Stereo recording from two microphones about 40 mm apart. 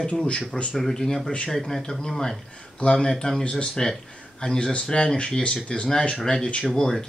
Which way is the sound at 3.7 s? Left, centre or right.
Centre.